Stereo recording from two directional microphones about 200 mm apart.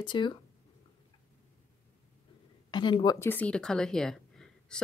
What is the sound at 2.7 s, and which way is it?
Speech, 25° left (ahead or behind).